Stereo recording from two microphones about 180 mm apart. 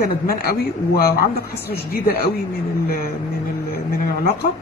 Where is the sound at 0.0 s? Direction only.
55° left (ahead or behind).